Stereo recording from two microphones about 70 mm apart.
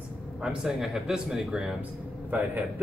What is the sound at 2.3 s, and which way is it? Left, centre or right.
Speech, right.